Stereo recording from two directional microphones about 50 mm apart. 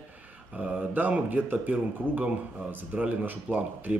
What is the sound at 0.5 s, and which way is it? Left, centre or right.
Speech, right.